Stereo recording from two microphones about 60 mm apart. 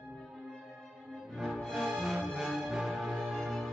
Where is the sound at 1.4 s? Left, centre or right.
Centre.